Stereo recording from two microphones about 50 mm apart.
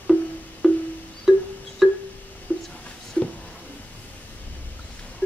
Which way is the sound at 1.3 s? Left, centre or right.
Centre.